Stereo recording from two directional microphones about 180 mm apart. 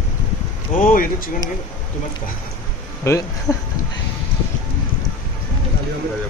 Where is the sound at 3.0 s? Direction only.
15° left (ahead or behind).